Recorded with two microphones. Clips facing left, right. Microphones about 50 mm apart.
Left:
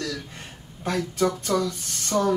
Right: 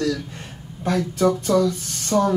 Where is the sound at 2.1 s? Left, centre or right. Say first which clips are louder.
Right 4 dB; right.